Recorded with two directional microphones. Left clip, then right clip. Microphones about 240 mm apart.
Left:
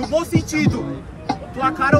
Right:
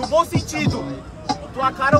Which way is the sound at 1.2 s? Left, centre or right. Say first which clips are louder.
Even; centre.